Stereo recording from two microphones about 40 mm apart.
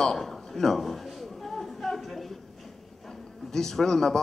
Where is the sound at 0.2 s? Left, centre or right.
Centre.